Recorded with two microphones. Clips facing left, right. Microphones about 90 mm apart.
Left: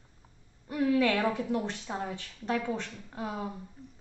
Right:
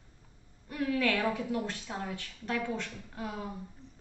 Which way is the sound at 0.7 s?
15° left (ahead or behind).